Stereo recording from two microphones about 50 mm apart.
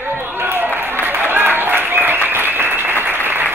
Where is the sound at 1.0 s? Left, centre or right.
Right.